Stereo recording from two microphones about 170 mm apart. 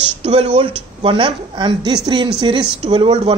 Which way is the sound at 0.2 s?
35° right (ahead or behind).